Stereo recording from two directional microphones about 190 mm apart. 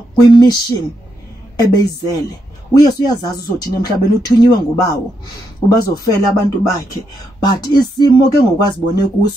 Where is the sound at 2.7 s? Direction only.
20° left (ahead or behind).